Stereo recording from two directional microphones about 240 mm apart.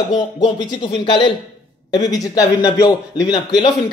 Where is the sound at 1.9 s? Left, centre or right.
Centre.